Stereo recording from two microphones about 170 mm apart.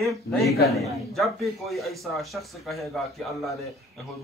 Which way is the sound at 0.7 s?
Centre (ahead or behind).